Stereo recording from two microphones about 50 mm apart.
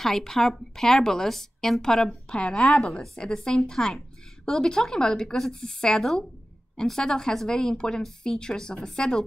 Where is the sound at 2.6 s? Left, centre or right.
Centre.